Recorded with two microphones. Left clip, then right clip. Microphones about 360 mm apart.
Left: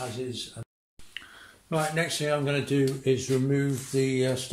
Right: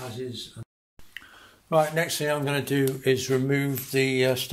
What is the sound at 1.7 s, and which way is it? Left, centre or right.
Speech, centre.